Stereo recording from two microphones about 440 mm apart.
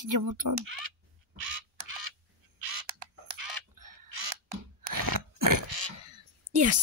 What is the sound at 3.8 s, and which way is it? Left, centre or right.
Crow, right.